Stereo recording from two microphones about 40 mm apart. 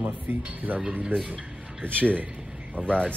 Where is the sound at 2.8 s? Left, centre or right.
Right.